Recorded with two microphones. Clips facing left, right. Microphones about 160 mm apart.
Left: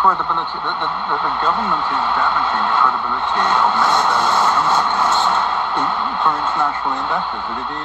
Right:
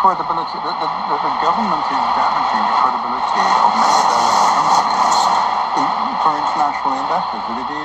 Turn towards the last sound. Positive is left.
turn(degrees=-40)  # may be behind; listen again after turning